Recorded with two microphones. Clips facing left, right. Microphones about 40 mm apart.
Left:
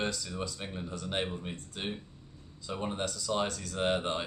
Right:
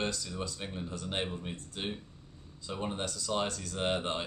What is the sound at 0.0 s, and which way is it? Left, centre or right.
Speech, centre.